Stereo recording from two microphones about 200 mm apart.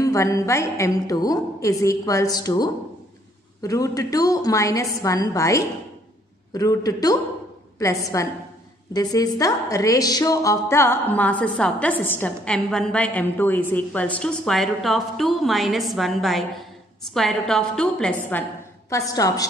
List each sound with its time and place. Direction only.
0.0 s a woman's voice: 15° left (ahead or behind)
18.9 s a woman's voice: 15° left (ahead or behind)